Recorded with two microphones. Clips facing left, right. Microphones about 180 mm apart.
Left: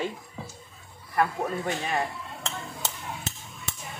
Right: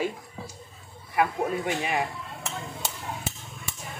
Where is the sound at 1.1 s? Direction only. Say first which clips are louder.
Right 1 dB; 10° right (ahead or behind).